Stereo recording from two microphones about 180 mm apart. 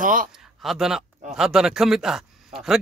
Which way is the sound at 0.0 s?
50° right (ahead or behind).